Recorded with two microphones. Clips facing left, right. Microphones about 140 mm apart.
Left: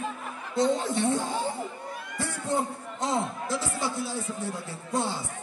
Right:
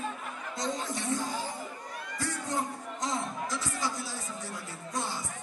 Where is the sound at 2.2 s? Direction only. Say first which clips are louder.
Left 4 dB; 25° left (ahead or behind).